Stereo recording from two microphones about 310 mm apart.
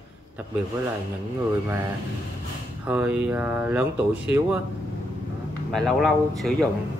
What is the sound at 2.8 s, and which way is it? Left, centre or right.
Speech, centre.